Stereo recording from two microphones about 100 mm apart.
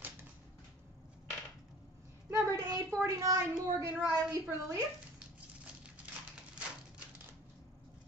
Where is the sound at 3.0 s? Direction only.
30° right (ahead or behind).